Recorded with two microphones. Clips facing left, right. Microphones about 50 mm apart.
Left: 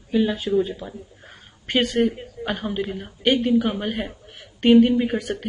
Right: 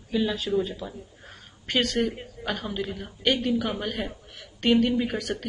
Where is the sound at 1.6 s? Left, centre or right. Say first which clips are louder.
Left 5 dB; left.